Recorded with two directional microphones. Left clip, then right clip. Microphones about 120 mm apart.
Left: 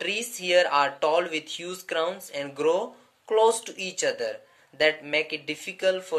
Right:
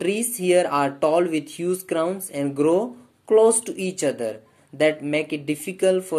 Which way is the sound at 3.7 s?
55° right (ahead or behind).